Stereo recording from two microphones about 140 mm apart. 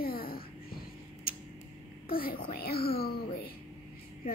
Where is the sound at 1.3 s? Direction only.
90° left.